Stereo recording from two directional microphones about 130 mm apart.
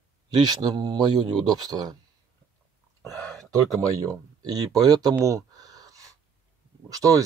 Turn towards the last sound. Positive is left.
turn(degrees=-25)  # may be behind; listen again after turning